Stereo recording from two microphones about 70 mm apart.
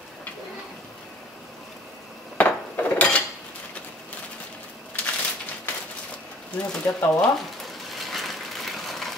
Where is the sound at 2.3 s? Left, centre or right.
Left.